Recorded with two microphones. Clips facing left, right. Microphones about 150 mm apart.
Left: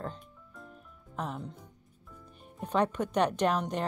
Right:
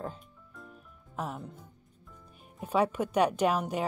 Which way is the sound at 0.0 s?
5° right (ahead or behind).